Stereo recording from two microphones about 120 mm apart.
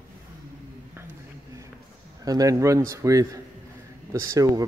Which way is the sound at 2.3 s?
30° right (ahead or behind).